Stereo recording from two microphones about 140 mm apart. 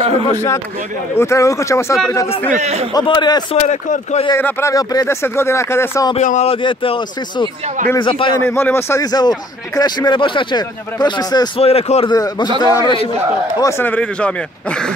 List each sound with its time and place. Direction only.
0.0 s a man's voice: 50° right (ahead or behind)
0.3 s speech: 15° left (ahead or behind)
2.5 s a man's voice: 50° right (ahead or behind)
2.9 s speech: 35° left (ahead or behind)
3.6 s speech: 55° left (ahead or behind)
4.4 s speech: 15° left (ahead or behind)
6.1 s speech: 55° left (ahead or behind)
6.5 s speech: 40° left (ahead or behind)
8.5 s speech: 15° left (ahead or behind); by 11.6 s 30° left (ahead or behind)
11.6 s a man's voice: 45° left (ahead or behind)
12.1 s speech: 30° left (ahead or behind); by 14.9 s 10° left (ahead or behind)